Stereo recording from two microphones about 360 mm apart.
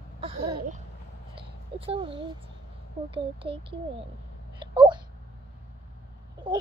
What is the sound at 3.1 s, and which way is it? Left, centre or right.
Speech, centre.